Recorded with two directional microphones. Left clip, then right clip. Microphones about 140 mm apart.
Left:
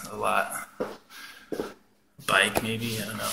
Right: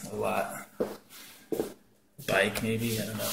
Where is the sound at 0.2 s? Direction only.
25° right (ahead or behind).